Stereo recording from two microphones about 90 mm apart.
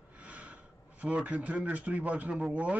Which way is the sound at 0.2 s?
15° right (ahead or behind).